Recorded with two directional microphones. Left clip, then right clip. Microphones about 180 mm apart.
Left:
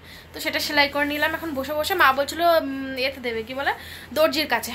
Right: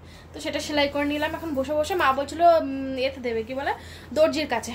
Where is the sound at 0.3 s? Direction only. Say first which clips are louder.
Left 3 dB; centre (ahead or behind).